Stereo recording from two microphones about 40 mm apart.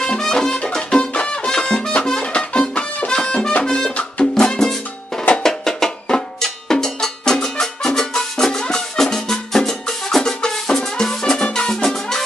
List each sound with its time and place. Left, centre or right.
0.2 s music: centre
5.4 s percussion: centre
7.4 s music: centre
11.3 s music: left
11.7 s music: centre